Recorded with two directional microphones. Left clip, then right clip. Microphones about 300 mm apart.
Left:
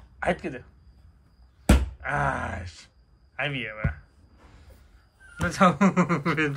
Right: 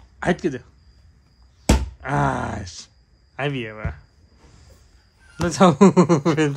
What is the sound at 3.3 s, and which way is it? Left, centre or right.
Speech, centre.